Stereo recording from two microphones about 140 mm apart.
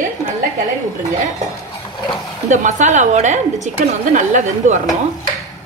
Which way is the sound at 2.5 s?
60° right (ahead or behind).